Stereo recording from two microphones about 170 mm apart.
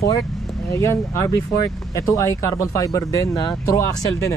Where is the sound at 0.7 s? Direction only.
15° left (ahead or behind).